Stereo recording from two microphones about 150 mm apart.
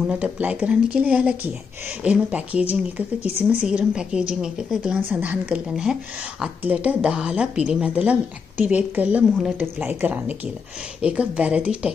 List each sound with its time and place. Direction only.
0.0 s a woman's voice: 10° right (ahead or behind)
3.2 s speech: 45° left (ahead or behind)
3.4 s a woman's voice: 5° right (ahead or behind)